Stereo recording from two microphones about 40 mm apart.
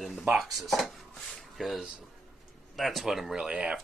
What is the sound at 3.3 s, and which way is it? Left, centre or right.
Speech, right.